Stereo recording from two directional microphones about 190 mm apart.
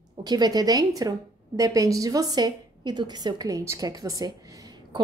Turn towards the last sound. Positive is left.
turn(degrees=-20)  # may be behind; listen again after turning